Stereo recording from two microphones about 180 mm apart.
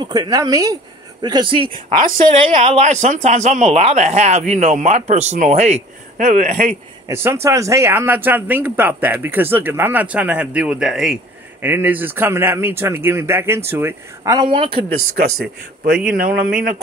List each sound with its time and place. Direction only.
0.0 s speech: 20° right (ahead or behind); by 6.7 s 45° right (ahead or behind)
7.1 s speech: 15° right (ahead or behind); by 14.9 s 30° right (ahead or behind)
16.1 s speech: 55° right (ahead or behind)